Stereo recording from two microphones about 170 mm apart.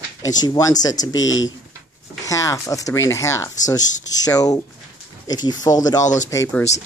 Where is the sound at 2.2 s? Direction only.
20° left (ahead or behind).